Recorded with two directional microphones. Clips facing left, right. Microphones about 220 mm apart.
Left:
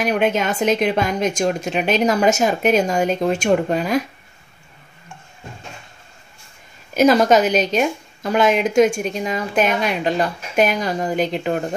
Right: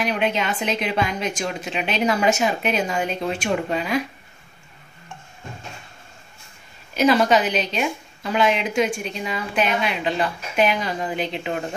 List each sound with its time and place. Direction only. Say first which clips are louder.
0.0 s a woman's voice: left 4 dB; 45° left (ahead or behind)
6.9 s a woman's voice: left 4 dB; 45° left (ahead or behind)